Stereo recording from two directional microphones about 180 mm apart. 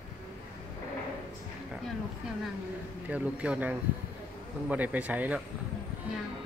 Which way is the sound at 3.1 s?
5° right (ahead or behind).